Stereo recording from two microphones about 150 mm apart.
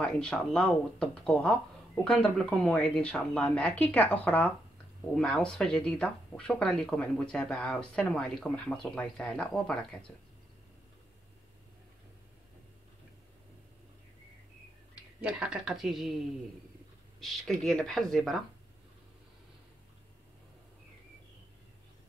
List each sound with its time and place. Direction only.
0.0 s speech: 5° left (ahead or behind)
15.1 s speech: 5° right (ahead or behind)
17.2 s speech: centre (ahead or behind)